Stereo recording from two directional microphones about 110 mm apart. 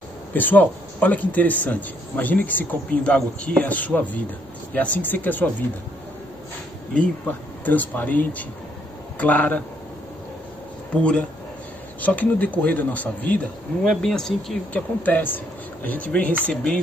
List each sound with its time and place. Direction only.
0.3 s speech: 15° left (ahead or behind)
6.9 s speech: 15° left (ahead or behind)
10.9 s speech: 10° left (ahead or behind)
15.0 s speech: 15° left (ahead or behind)